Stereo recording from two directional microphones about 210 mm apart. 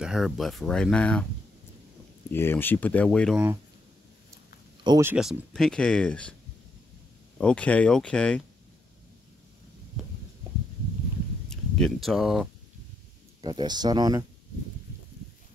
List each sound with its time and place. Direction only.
0.0 s speech: centre (ahead or behind)
2.3 s speech: 10° left (ahead or behind)
4.8 s speech: 15° right (ahead or behind)
5.1 s speech: centre (ahead or behind)
7.3 s speech: 5° left (ahead or behind)
11.4 s speech: centre (ahead or behind)
13.4 s speech: 20° right (ahead or behind)